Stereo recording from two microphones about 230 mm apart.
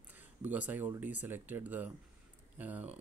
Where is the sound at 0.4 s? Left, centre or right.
Centre.